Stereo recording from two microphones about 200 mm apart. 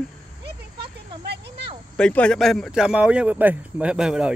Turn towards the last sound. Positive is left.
turn(degrees=-5)  # may be behind; listen again after turning